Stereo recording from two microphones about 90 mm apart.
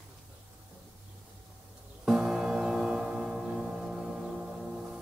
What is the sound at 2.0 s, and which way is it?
Music, 5° right (ahead or behind).